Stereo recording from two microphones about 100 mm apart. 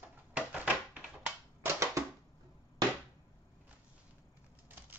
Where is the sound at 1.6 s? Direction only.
30° right (ahead or behind).